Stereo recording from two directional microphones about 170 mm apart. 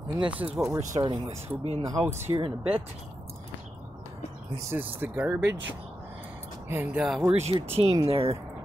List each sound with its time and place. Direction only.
0.2 s speech: 30° right (ahead or behind)
1.9 s speech: 15° right (ahead or behind)
2.3 s speech: 30° right (ahead or behind)
4.6 s speech: 10° right (ahead or behind)
6.7 s speech: 10° right (ahead or behind)
7.4 s speech: 35° right (ahead or behind)